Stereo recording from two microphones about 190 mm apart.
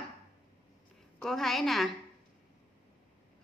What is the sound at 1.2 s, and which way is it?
Speech, centre (ahead or behind).